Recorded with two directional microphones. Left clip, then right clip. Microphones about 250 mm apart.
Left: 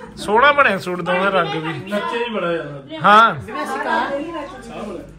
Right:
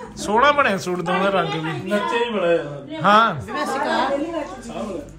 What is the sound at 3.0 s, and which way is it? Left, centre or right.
Speech, centre.